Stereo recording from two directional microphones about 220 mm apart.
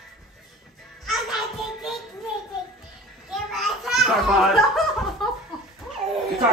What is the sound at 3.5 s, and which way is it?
Laughter, centre (ahead or behind).